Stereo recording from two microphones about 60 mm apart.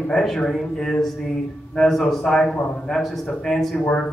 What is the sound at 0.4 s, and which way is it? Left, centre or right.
A man's voice, centre.